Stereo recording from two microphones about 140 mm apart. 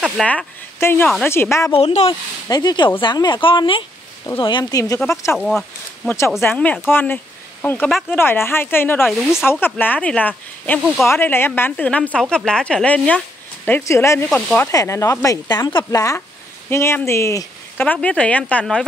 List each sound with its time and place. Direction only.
0.2 s speech: 5° left (ahead or behind)
0.7 s speech: 15° left (ahead or behind)
1.0 s speech: centre (ahead or behind)
1.3 s speech: 20° left (ahead or behind)
1.7 s speech: 45° left (ahead or behind)
2.4 s speech: 30° left (ahead or behind)
5.4 s speech: centre (ahead or behind)
6.0 s a woman's voice: 20° left (ahead or behind)
14.7 s speech: 20° left (ahead or behind)
17.8 s a woman's voice: 10° left (ahead or behind)